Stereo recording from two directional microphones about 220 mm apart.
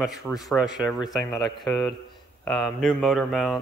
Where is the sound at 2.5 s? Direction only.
Centre (ahead or behind).